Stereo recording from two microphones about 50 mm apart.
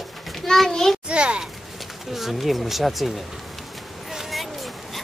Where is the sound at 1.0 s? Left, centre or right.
Centre.